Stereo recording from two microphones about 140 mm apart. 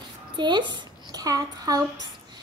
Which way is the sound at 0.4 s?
35° right (ahead or behind).